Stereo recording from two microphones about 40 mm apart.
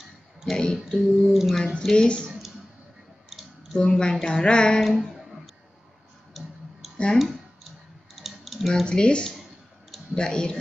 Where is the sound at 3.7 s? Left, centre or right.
Left.